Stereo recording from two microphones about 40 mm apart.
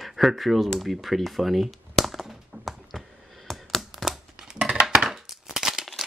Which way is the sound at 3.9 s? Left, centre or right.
Centre.